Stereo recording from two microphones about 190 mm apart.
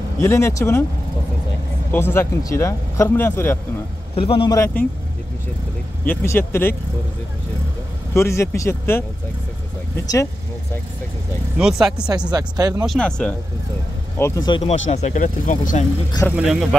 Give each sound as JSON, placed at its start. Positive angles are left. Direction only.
{"t": 0.2, "sound": "speech", "side_deg": 15}
{"t": 1.9, "sound": "speech", "side_deg": 10}
{"t": 4.1, "sound": "speech", "side_deg": 30}
{"t": 6.0, "sound": "speech", "side_deg": 10}
{"t": 8.1, "sound": "speech", "side_deg": 15}
{"t": 11.5, "sound": "speech", "side_deg": -5}
{"t": 12.3, "sound": "speech", "side_deg": -20}
{"t": 12.8, "sound": "speech", "side_deg": 5}
{"t": 14.9, "sound": "speech", "side_deg": 35}
{"t": 16.3, "sound": "speech", "side_deg": -5}